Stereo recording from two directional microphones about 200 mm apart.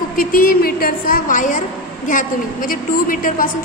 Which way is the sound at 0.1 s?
45° left (ahead or behind).